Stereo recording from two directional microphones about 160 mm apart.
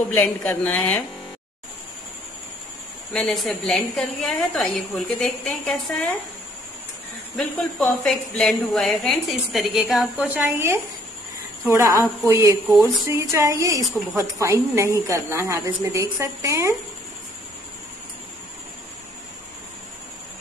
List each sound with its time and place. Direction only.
0.1 s speech: 10° left (ahead or behind)
3.1 s a woman's voice: centre (ahead or behind)
7.3 s a woman's voice: centre (ahead or behind); by 16.7 s 20° right (ahead or behind)